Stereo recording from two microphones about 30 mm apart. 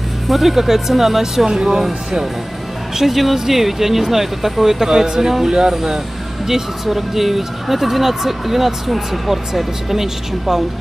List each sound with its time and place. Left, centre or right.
0.3 s speech: centre
3.0 s speech: centre; by 5.8 s right
6.9 s speech: centre